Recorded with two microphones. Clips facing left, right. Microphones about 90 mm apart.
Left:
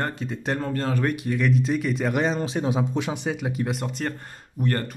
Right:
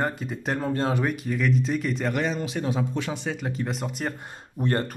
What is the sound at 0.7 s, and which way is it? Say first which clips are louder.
Speech: right 1 dB; 20° right (ahead or behind).